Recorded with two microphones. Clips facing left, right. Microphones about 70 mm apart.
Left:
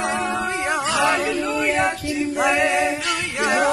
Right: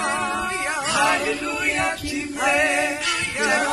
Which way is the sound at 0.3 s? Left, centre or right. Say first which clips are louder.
Left 2 dB; left.